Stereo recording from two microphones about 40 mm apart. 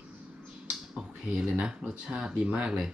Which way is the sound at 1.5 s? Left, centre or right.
Right.